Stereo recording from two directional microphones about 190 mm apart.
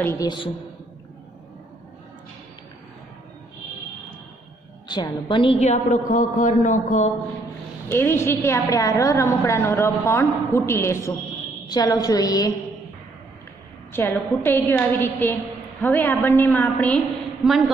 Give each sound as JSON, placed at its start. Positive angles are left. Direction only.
{"t": 0.0, "sound": "a woman's voice", "side_deg": 15}
{"t": 4.8, "sound": "a woman's voice", "side_deg": 25}
{"t": 7.9, "sound": "a woman's voice", "side_deg": 15}
{"t": 13.9, "sound": "a woman's voice", "side_deg": 10}